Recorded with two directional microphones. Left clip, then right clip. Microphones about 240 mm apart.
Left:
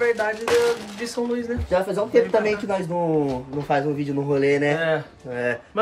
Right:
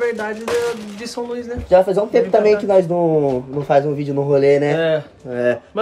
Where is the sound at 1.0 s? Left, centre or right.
Centre.